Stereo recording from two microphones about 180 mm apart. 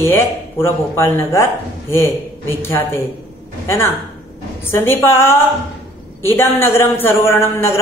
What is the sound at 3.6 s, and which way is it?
A man's voice, 15° left (ahead or behind).